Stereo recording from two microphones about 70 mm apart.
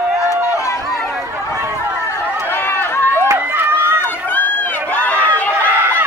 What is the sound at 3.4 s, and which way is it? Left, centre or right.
Run, right.